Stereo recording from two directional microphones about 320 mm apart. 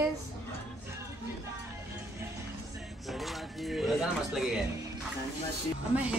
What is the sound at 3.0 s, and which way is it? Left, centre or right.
Speech, centre.